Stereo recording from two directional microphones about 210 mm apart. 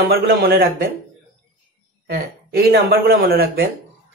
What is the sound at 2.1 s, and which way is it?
Speech, 45° right (ahead or behind).